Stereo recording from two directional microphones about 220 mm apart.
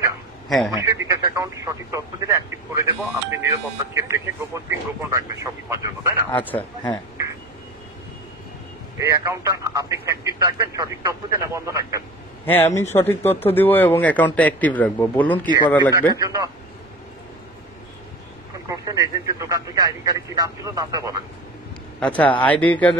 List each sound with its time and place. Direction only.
0.5 s a man's voice: centre (ahead or behind)
0.7 s speech: 15° right (ahead or behind)
6.3 s speech: 10° left (ahead or behind)
8.9 s speech: 15° right (ahead or behind)
12.7 s speech: 10° left (ahead or behind)
16.1 s speech: 15° right (ahead or behind)
18.7 s speech: 15° right (ahead or behind)
22.0 s speech: 5° left (ahead or behind)